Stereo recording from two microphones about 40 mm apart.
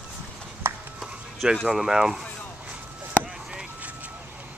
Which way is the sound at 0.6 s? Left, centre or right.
Right.